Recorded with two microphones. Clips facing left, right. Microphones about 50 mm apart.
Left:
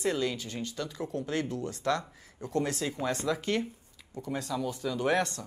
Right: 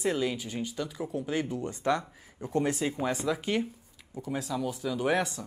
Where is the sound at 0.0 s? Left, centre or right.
Centre.